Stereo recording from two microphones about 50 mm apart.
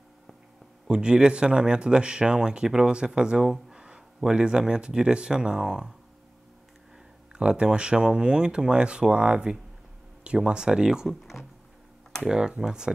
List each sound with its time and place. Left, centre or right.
0.8 s speech: centre
7.3 s speech: centre
12.2 s speech: centre